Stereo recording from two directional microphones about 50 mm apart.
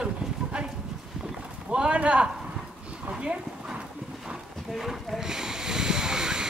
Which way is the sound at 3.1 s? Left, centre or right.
Centre.